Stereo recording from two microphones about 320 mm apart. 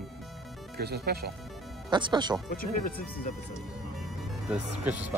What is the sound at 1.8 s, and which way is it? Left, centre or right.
Speech, centre.